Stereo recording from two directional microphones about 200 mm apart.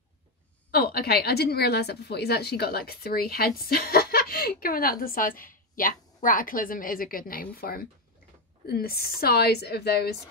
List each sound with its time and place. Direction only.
0.7 s a woman's voice: 50° left (ahead or behind)